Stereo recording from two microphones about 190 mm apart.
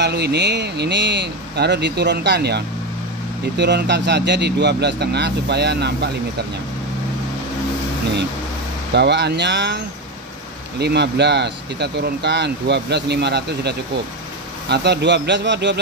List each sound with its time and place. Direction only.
0.0 s speech: 60° right (ahead or behind)
8.9 s speech: 65° right (ahead or behind)
10.8 s speech: 60° right (ahead or behind)